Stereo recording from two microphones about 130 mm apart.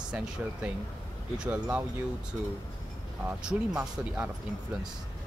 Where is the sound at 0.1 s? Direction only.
10° right (ahead or behind).